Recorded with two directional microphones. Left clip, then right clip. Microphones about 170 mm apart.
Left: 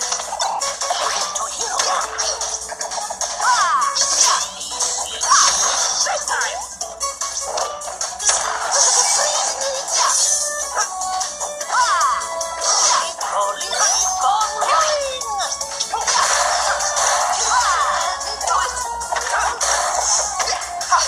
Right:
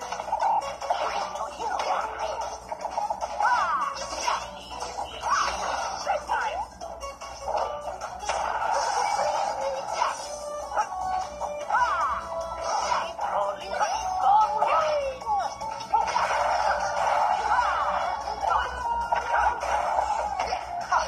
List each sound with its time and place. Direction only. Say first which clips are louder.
0.1 s music: right 2 dB; 15° left (ahead or behind)
3.3 s music: left 8 dB; 15° left (ahead or behind)
8.3 s music: left 6 dB; 20° left (ahead or behind)
11.7 s music: left 8 dB; 20° left (ahead or behind)
15.9 s whip: left 6 dB; 20° left (ahead or behind)
19.1 s music: left 6 dB; 20° left (ahead or behind)